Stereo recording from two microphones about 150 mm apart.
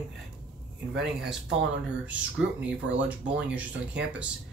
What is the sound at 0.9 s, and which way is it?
Speech, 5° right (ahead or behind).